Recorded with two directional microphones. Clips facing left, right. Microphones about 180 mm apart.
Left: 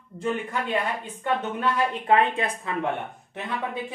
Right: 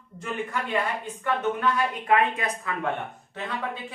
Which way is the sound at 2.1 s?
25° left (ahead or behind).